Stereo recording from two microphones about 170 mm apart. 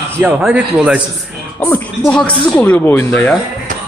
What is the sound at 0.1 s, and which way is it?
Speech, 15° right (ahead or behind).